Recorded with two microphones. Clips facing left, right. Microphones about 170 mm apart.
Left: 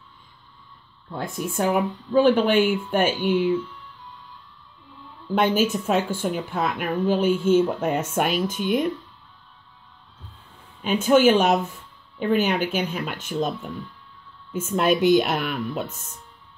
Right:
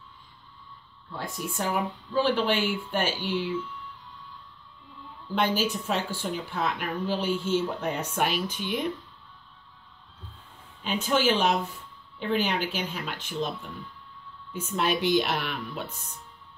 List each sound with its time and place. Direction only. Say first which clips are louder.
1.1 s speech: left 6 dB; 50° left (ahead or behind)
5.3 s speech: left 6 dB; 50° left (ahead or behind)
10.8 s speech: left 9 dB; 50° left (ahead or behind)
14.5 s speech: left 6 dB; 50° left (ahead or behind)